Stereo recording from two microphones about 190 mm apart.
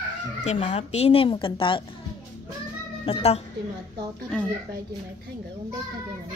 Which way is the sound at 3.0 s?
30° left (ahead or behind).